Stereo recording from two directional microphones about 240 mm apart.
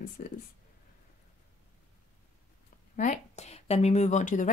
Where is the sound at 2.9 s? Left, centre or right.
Left.